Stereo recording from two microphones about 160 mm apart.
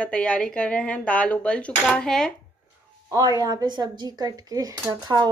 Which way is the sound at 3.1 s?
20° right (ahead or behind).